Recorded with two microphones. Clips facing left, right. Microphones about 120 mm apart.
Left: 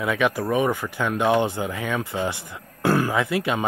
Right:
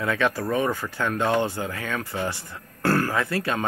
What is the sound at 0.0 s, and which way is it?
Speech, 15° left (ahead or behind).